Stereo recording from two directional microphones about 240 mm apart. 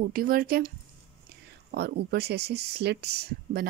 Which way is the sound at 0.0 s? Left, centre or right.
Right.